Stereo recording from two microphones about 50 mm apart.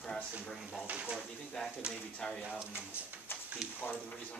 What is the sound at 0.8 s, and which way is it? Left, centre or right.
Speech, right.